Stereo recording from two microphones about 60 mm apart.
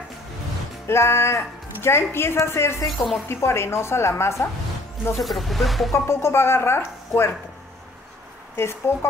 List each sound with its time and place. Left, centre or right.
0.8 s speech: left
2.8 s speech: centre
3.3 s speech: left
5.1 s speech: centre
5.9 s speech: left
8.5 s speech: left